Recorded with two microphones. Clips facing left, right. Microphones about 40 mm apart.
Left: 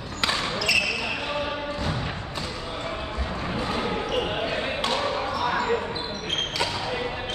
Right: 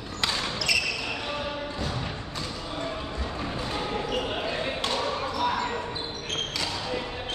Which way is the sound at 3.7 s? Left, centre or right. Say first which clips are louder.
Left 2 dB; left.